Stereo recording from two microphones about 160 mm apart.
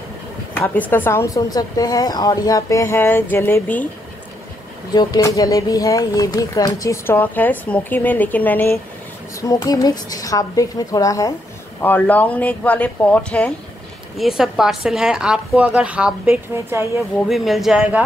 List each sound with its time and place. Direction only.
0.6 s speech: 10° left (ahead or behind)
4.9 s speech: 20° left (ahead or behind)
9.4 s speech: 20° left (ahead or behind)
14.1 s speech: centre (ahead or behind)